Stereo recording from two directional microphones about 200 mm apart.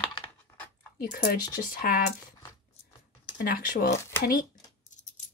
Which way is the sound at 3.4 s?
50° left (ahead or behind).